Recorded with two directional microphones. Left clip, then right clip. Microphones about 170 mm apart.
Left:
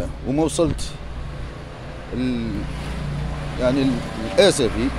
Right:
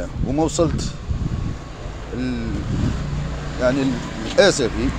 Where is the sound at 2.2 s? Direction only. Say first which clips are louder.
Left 2 dB; 15° left (ahead or behind).